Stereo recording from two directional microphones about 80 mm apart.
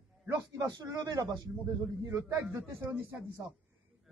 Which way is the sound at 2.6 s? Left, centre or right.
Centre.